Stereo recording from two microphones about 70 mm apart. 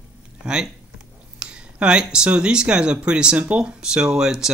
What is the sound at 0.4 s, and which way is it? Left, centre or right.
Speech, centre.